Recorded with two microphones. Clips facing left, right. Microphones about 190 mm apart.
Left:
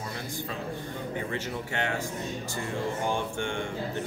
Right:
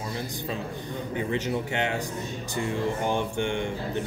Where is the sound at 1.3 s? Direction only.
20° right (ahead or behind).